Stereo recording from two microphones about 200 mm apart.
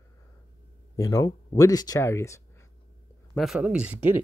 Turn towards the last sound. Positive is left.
turn(degrees=-5)  # may be behind; listen again after turning